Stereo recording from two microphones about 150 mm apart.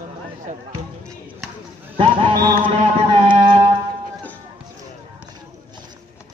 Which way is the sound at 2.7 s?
35° right (ahead or behind).